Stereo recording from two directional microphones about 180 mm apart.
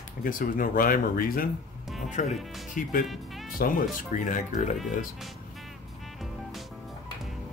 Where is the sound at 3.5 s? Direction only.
50° left (ahead or behind).